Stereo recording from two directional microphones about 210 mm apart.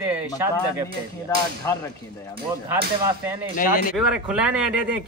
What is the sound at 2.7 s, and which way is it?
Speech, 15° right (ahead or behind).